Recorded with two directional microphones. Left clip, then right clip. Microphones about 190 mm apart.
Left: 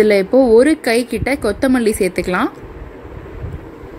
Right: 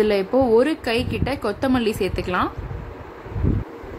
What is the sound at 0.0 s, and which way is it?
A woman's voice, 15° left (ahead or behind).